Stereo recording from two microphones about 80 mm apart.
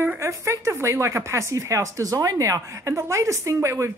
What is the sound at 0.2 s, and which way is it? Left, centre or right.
Speech, right.